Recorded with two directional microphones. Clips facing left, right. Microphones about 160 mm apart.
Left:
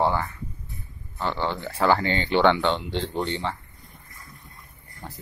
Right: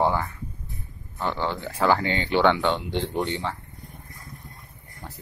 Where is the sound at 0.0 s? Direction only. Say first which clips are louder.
Even; 5° right (ahead or behind).